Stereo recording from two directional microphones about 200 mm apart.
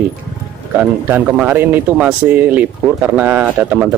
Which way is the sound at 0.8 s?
10° right (ahead or behind).